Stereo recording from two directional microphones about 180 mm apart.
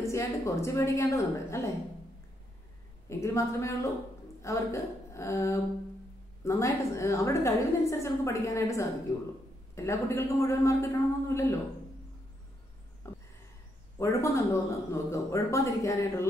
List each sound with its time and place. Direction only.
0.0 s a woman's voice: 15° left (ahead or behind)
3.1 s a woman's voice: 15° left (ahead or behind)
13.0 s a sound: 15° left (ahead or behind)
13.9 s a woman's voice: 15° left (ahead or behind)